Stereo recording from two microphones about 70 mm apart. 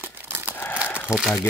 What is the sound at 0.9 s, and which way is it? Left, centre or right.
Crumpling, centre.